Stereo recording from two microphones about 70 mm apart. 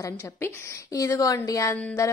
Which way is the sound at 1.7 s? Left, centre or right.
Left.